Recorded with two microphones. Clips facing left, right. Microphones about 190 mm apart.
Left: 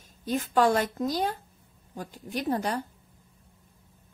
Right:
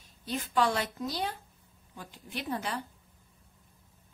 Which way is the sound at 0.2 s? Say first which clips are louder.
Left 5 dB; 45° left (ahead or behind).